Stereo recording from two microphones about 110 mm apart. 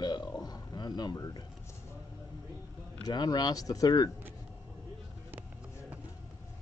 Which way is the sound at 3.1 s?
40° left (ahead or behind).